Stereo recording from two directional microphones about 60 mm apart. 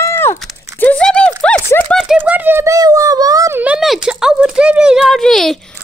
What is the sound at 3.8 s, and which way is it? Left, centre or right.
Speech, centre.